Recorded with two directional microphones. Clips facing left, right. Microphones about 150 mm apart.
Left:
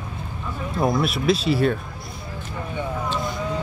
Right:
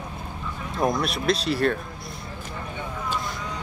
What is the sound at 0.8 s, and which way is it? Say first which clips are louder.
Speech: left 2 dB; centre (ahead or behind).